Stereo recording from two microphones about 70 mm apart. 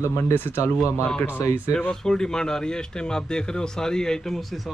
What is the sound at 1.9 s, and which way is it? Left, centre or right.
A man's voice, centre.